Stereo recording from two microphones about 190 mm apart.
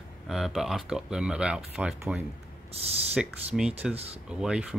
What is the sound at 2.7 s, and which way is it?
Speech, 30° right (ahead or behind).